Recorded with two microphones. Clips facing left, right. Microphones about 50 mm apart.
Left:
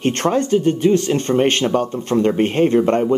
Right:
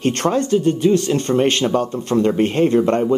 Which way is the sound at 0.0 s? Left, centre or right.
Left.